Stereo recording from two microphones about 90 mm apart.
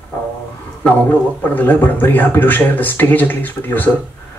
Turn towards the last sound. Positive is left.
turn(degrees=20)  # may be behind; listen again after turning